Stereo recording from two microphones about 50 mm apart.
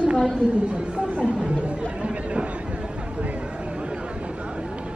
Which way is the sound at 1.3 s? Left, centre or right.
Right.